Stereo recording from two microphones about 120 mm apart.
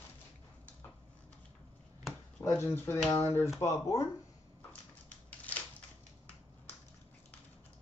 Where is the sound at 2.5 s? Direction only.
20° left (ahead or behind).